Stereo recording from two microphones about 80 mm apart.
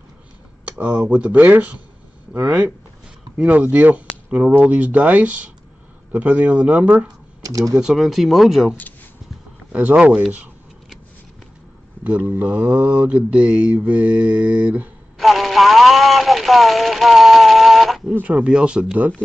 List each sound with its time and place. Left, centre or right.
0.7 s speech: centre
1.0 s mantra: centre
2.3 s speech: right
3.3 s mantra: centre
7.4 s speech: right
7.8 s speech: centre
9.7 s mantra: centre
12.0 s mantra: right
15.1 s a sound: centre
18.2 s mantra: centre